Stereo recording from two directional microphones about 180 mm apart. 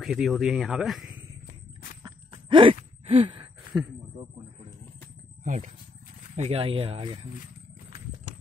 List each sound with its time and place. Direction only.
0.0 s speech: centre (ahead or behind)
2.0 s a sound: 30° right (ahead or behind)
5.4 s speech: 45° right (ahead or behind)